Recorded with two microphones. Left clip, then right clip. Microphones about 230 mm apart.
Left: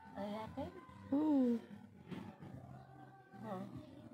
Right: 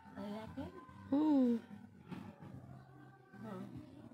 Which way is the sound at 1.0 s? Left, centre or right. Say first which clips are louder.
Right 2 dB; centre.